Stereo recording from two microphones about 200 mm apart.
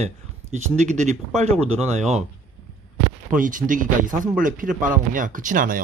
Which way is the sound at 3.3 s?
40° right (ahead or behind).